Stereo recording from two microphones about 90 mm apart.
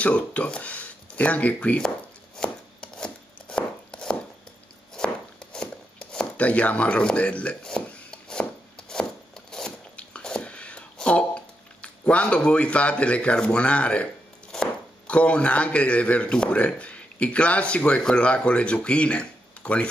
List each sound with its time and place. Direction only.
0.0 s speech: 15° left (ahead or behind)
2.3 s chopping: 10° left (ahead or behind)
14.5 s speech: 10° left (ahead or behind)